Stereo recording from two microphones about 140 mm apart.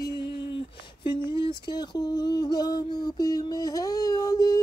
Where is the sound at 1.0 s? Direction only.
35° left (ahead or behind).